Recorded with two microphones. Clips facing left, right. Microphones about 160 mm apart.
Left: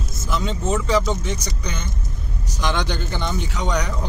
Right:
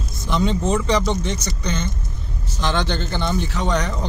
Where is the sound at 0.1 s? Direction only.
Centre (ahead or behind).